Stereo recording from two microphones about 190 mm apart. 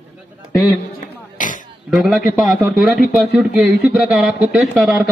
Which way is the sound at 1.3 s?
45° left (ahead or behind).